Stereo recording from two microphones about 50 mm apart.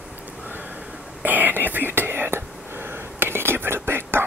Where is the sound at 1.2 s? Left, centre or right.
Right.